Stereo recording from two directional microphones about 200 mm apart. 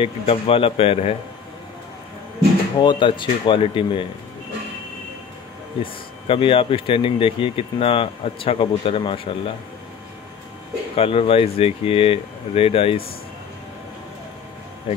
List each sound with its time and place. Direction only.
0.0 s speech: 30° left (ahead or behind)
2.8 s speech: 20° left (ahead or behind)
5.8 s speech: 25° left (ahead or behind)
11.0 s speech: 30° left (ahead or behind)
14.9 s speech: 30° left (ahead or behind)